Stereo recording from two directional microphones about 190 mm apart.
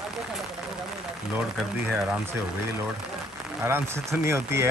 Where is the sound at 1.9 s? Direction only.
5° right (ahead or behind).